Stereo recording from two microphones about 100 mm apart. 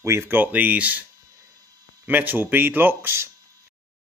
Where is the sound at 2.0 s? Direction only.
20° right (ahead or behind).